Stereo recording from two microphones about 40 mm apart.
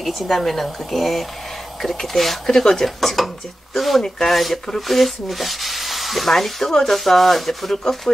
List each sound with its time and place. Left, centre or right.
0.0 s sizzle: centre
1.8 s speech: centre
2.5 s speech: centre
2.8 s sizzle: centre